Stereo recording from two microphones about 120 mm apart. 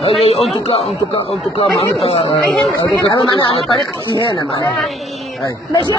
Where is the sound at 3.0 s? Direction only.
50° left (ahead or behind).